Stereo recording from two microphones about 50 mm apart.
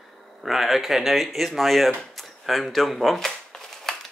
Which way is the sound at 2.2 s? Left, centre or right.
Centre.